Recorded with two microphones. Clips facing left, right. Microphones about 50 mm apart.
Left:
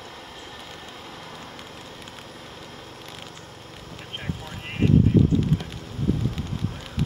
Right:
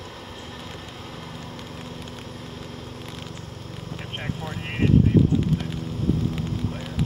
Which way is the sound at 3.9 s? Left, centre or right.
Centre.